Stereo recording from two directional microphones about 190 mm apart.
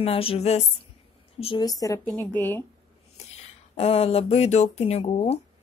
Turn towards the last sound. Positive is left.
turn(degrees=30)  # may be behind; listen again after turning